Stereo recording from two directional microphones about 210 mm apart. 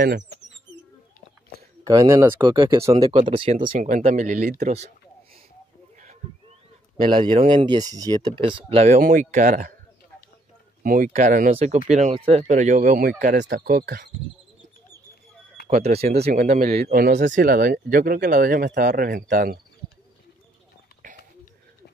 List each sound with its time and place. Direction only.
1.9 s speech: 15° right (ahead or behind)
3.5 s speech: 40° right (ahead or behind)
7.0 s speech: 25° right (ahead or behind)
10.8 s speech: 40° right (ahead or behind)
16.2 s speech: 35° right (ahead or behind)